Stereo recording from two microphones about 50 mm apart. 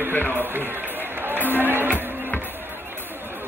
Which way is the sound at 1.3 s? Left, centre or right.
Right.